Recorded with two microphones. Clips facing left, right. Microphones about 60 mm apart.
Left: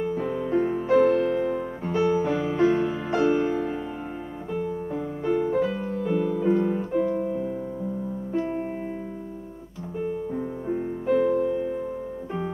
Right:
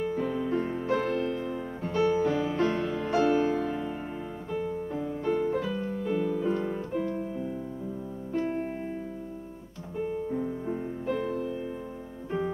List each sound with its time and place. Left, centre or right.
0.3 s music: centre
0.8 s music: left
2.5 s music: centre
4.9 s music: left
5.7 s music: centre
10.3 s music: centre
11.5 s music: centre